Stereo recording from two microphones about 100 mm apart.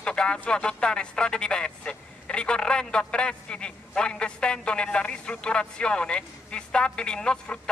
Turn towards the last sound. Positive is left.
turn(degrees=10)  # may be behind; listen again after turning